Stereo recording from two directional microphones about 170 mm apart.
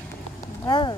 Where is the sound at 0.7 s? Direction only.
25° left (ahead or behind).